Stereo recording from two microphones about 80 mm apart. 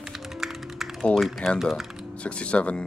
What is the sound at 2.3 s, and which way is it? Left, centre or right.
Speech, centre.